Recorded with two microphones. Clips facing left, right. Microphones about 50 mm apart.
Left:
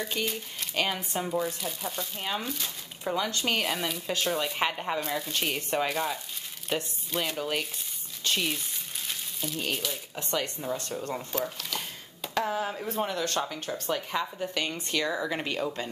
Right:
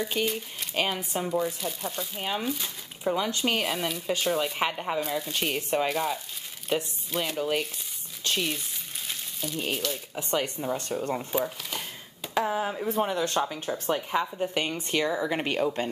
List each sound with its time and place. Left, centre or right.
0.0 s speech: centre
8.2 s crumpling: centre
10.3 s speech: centre
15.8 s speech: right